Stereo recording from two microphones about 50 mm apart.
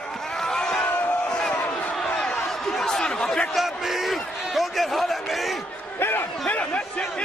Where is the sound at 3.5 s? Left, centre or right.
Centre.